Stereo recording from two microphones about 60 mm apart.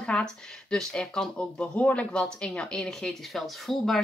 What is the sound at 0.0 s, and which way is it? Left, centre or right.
Speech, centre.